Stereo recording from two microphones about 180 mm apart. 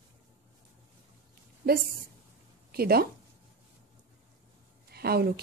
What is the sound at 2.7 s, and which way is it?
Speech, 60° right (ahead or behind).